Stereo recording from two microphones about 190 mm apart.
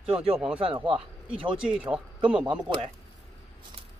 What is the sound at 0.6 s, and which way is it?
Speech, 30° right (ahead or behind).